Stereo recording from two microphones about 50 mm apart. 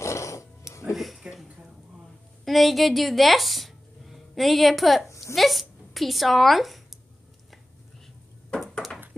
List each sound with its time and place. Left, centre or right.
0.0 s music: left
0.9 s a sound: centre
2.4 s speech: centre